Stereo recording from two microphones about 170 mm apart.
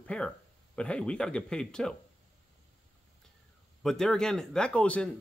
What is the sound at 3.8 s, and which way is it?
Speech, centre (ahead or behind).